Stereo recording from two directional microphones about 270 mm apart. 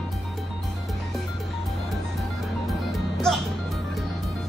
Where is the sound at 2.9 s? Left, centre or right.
Centre.